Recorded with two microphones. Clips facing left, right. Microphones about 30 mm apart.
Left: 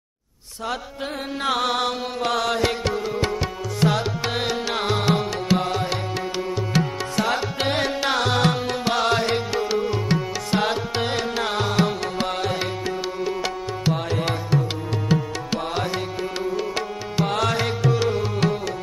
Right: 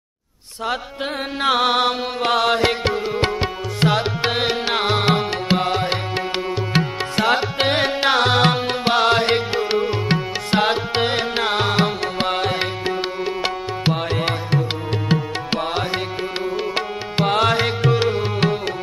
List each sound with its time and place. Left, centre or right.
1.4 s music: right